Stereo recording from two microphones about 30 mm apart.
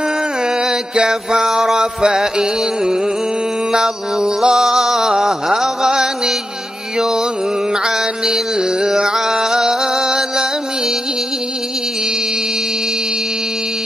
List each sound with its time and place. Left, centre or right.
0.6 s music: right
1.4 s mantra: centre
5.9 s music: centre